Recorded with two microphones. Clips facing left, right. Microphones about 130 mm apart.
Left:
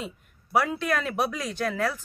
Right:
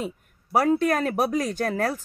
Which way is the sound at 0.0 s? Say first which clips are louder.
Right 5 dB; 40° right (ahead or behind).